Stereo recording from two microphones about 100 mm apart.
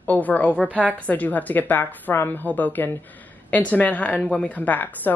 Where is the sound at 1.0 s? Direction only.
15° left (ahead or behind).